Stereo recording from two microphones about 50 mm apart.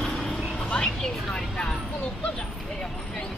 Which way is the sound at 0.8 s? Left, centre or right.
Centre.